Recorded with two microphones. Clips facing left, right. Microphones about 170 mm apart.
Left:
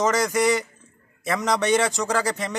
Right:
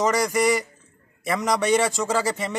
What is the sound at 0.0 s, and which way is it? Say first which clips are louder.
Speech: even; centre (ahead or behind).